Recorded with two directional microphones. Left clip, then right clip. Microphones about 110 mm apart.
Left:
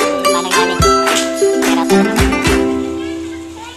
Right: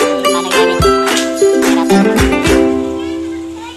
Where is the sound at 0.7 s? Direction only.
Centre (ahead or behind).